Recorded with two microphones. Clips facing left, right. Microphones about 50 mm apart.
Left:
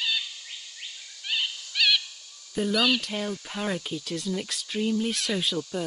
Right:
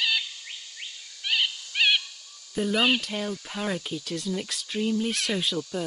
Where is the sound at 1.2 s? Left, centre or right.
Right.